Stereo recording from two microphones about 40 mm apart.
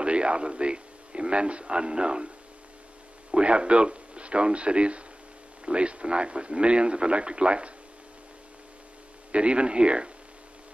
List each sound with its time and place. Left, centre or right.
0.0 s a man's voice: right
9.3 s speech: right